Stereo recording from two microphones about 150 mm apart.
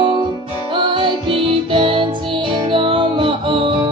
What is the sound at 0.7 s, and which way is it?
Music, 30° right (ahead or behind).